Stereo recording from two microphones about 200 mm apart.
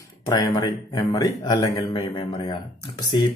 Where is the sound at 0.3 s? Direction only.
20° left (ahead or behind).